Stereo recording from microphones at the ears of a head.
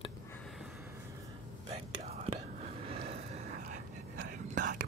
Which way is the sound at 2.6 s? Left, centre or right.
Right.